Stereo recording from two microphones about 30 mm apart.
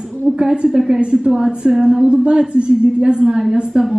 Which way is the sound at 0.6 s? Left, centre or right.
Centre.